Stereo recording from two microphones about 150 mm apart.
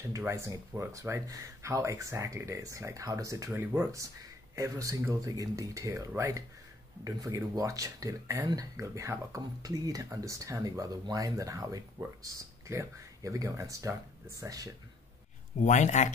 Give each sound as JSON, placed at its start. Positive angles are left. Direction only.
{"t": 0.1, "sound": "speech", "side_deg": -20}
{"t": 15.6, "sound": "speech", "side_deg": 50}